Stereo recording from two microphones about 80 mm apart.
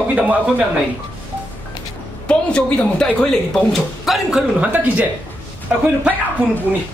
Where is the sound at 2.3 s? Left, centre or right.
Centre.